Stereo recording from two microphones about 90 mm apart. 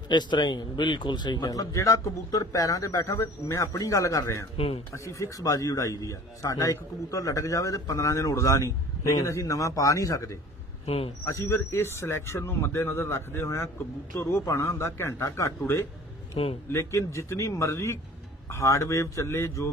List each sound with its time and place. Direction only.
0.1 s a man's voice: 55° left (ahead or behind)
1.5 s a man's voice: 40° left (ahead or behind)
16.4 s a man's voice: 90° left
16.7 s a man's voice: 35° left (ahead or behind)